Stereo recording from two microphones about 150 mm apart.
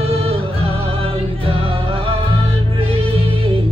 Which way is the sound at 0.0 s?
40° right (ahead or behind).